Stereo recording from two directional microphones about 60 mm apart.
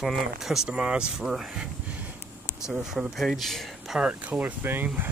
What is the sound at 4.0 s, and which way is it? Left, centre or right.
Speech, right.